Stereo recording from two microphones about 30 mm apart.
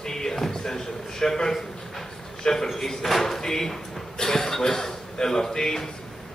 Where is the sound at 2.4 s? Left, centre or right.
Centre.